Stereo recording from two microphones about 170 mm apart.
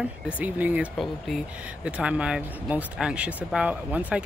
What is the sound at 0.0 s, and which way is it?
Speech, 10° right (ahead or behind).